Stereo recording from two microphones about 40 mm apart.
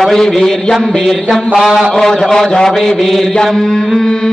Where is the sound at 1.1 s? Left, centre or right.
Centre.